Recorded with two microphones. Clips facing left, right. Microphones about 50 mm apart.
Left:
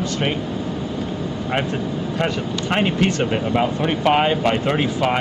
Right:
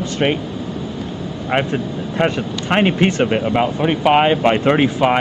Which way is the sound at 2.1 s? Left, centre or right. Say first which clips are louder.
Right 6 dB; right.